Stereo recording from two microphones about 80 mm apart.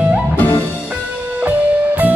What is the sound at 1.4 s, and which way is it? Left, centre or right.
Music, right.